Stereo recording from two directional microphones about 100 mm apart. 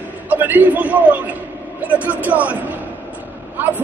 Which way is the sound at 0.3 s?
15° right (ahead or behind).